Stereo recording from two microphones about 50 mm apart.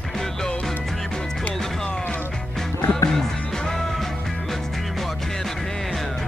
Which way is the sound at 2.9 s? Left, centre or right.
Centre.